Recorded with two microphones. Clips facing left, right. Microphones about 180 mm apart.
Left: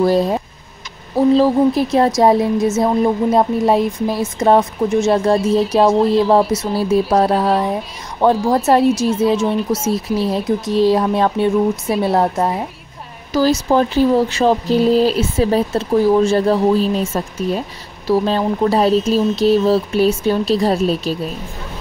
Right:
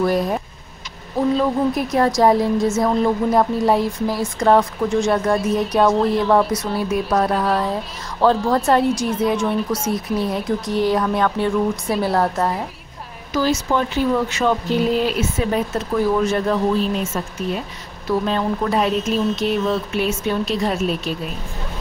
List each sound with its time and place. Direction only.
0.0 s speech: 30° left (ahead or behind)
13.3 s speech: 35° left (ahead or behind)